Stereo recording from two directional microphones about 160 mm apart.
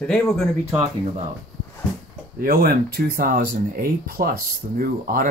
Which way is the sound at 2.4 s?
65° right (ahead or behind).